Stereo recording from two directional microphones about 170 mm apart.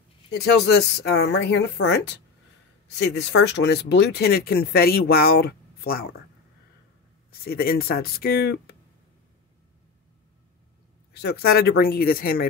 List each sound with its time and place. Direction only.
0.3 s speech: 70° left (ahead or behind)
7.2 s speech: 65° left (ahead or behind)
11.1 s speech: 70° left (ahead or behind)